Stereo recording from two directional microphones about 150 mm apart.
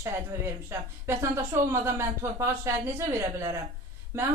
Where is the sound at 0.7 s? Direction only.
15° right (ahead or behind).